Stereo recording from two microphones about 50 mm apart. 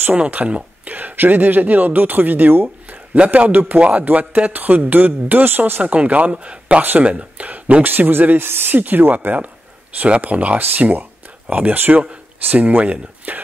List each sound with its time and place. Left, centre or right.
0.1 s speech: right
7.8 s speech: right
11.7 s speech: right
12.5 s speech: right